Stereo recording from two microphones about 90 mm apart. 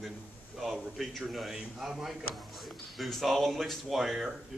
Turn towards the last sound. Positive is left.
turn(degrees=0)  # may be behind; listen again after turning